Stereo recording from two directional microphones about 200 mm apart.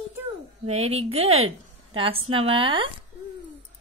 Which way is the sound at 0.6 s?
30° right (ahead or behind).